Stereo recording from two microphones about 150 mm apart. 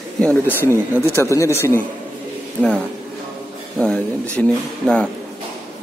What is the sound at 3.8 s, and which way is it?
Speech, 5° left (ahead or behind).